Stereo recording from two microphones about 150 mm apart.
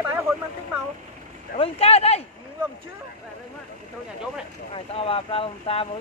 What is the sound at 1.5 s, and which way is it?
Speech, 40° left (ahead or behind).